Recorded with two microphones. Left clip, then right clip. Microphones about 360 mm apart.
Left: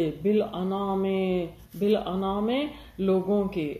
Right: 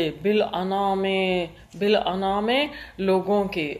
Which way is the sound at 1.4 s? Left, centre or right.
Right.